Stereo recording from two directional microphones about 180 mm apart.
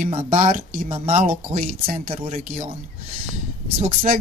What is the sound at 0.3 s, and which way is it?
Speech, 50° right (ahead or behind).